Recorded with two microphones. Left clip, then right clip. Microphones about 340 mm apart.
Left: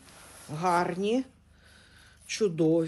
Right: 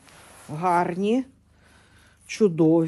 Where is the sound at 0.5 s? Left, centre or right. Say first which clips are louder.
Right 4 dB; centre.